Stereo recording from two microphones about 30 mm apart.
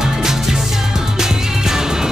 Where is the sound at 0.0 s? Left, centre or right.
Centre.